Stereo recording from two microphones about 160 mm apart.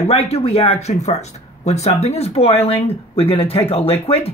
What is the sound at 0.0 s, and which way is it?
Speech, 40° left (ahead or behind).